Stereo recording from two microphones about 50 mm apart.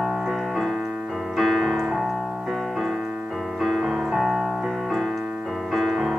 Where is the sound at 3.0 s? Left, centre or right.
Centre.